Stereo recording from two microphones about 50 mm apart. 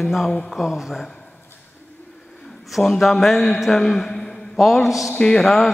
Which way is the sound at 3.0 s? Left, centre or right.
Centre.